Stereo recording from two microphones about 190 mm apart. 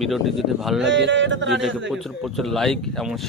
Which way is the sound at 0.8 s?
70° right (ahead or behind).